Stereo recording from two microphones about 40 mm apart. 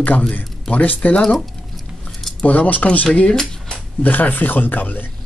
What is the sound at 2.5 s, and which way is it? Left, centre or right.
Speech, left.